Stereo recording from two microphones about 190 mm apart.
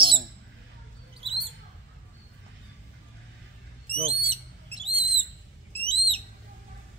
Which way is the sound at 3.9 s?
30° right (ahead or behind).